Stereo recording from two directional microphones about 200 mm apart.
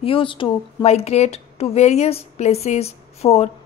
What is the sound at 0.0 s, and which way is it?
A woman's voice, 25° left (ahead or behind).